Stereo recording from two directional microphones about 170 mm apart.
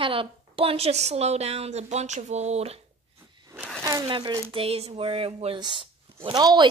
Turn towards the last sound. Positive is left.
turn(degrees=-25)  # may be behind; listen again after turning